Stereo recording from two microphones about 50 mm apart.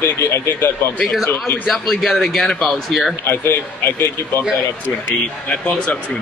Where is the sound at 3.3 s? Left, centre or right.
Left.